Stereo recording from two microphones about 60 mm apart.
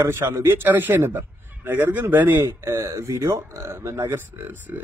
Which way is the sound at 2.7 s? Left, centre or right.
Right.